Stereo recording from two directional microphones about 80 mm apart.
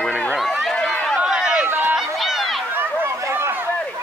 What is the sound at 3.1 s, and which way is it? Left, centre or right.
Run, right.